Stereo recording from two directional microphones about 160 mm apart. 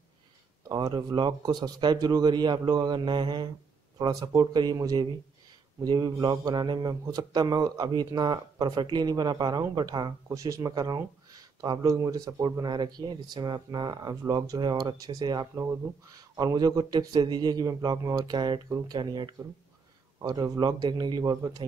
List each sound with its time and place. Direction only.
0.7 s speech: 25° right (ahead or behind)